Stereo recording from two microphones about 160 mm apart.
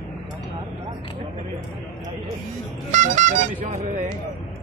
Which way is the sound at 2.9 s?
50° right (ahead or behind).